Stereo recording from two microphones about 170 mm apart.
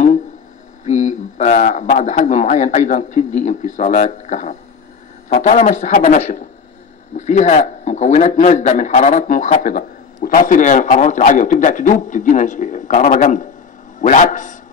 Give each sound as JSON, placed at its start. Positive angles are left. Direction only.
{"t": 0.8, "sound": "a man's voice", "side_deg": 45}